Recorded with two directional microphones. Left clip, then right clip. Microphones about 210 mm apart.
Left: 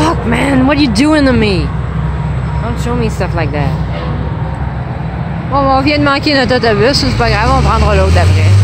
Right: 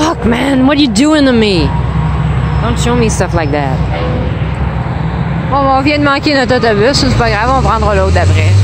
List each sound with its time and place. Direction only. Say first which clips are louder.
0.0 s speech: right 1 dB; 20° right (ahead or behind)
3.0 s a woman's voice: right 4 dB; 15° right (ahead or behind)
5.5 s speech: even; centre (ahead or behind)